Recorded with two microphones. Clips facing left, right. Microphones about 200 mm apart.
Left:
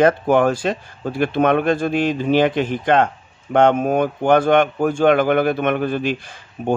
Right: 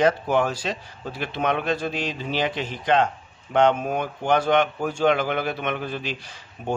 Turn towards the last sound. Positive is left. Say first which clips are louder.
# left 8 dB
turn(degrees=55)  # may be behind; listen again after turning